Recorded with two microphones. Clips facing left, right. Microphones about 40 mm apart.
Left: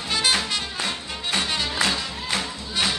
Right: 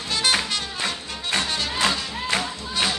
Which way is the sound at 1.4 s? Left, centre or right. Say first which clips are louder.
Left 1 dB; centre.